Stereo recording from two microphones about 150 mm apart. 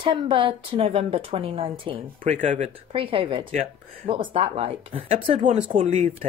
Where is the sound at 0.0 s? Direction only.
35° right (ahead or behind).